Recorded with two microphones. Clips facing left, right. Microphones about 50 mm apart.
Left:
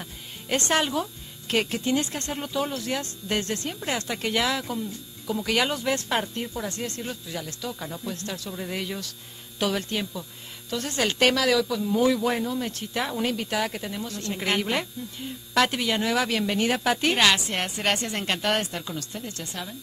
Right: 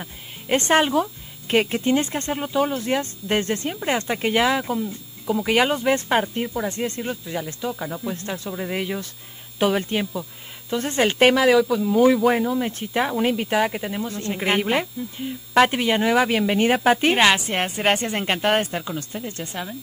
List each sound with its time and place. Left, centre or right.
0.0 s a woman's voice: right